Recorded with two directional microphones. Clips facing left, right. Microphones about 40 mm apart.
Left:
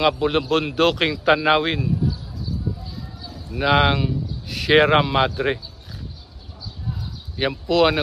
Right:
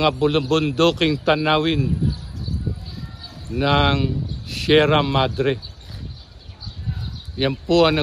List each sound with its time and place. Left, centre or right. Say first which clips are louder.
0.2 s a man's voice: right 2 dB; centre
2.0 s a sound: even; right
3.2 s bird: even; right
3.5 s a man's voice: even; centre
7.3 s speech: right 2 dB; centre